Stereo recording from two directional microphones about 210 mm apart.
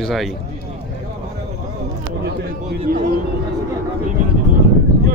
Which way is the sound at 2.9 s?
45° right (ahead or behind).